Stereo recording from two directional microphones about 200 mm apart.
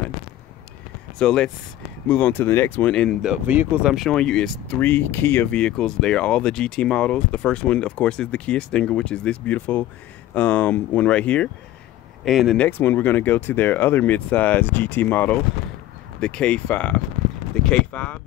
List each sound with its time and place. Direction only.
1.2 s speech: 5° left (ahead or behind)